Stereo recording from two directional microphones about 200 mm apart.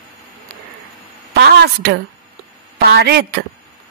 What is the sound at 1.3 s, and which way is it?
A woman's voice, 55° right (ahead or behind).